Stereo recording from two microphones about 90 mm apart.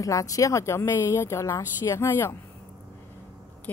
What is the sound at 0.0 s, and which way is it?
A woman's voice, 40° left (ahead or behind).